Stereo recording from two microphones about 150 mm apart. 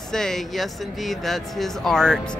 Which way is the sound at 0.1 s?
5° left (ahead or behind).